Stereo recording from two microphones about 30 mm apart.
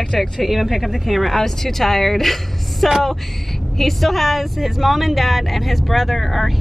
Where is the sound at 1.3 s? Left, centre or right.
Centre.